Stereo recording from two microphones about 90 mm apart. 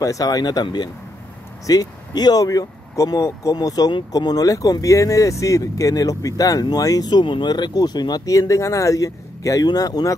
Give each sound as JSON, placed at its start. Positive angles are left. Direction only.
{"t": 0.0, "sound": "speech", "side_deg": 40}